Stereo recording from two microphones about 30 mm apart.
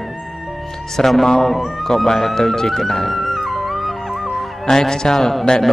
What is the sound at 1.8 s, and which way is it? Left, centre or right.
Speech, centre.